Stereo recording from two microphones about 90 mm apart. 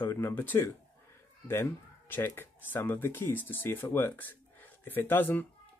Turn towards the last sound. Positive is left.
turn(degrees=20)  # may be behind; listen again after turning